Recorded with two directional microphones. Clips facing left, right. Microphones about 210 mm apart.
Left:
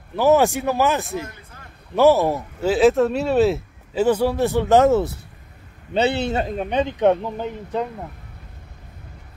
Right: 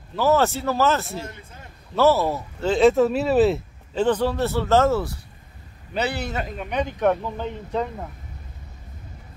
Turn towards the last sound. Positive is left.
turn(degrees=5)  # may be behind; listen again after turning